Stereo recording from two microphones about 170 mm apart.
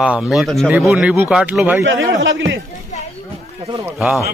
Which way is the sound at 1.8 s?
90° right.